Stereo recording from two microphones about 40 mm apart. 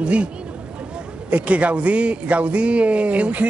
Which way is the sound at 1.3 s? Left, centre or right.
Right.